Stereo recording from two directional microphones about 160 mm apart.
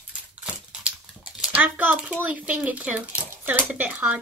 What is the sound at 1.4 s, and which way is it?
A child's voice, 10° right (ahead or behind).